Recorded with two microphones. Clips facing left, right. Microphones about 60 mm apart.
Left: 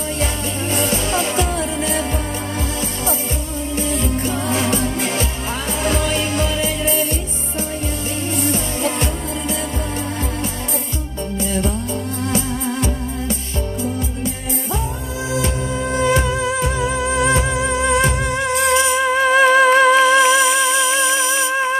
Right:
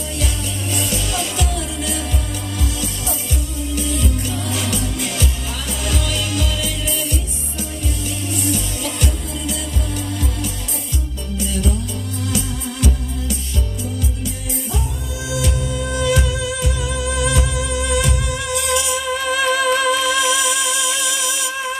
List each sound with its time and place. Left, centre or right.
0.2 s music: left
3.7 s music: left
8.4 s music: left
11.3 s music: left